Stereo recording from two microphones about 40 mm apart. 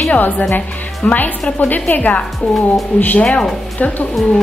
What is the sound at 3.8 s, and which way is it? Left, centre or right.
Speech, left.